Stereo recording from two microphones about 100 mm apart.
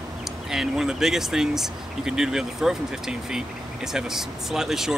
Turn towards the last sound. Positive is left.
turn(degrees=-5)  # may be behind; listen again after turning